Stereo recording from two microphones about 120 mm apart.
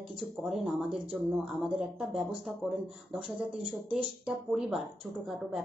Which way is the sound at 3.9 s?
5° right (ahead or behind).